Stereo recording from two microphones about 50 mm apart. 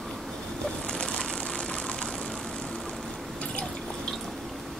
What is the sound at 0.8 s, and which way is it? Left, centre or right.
Vehicle, centre.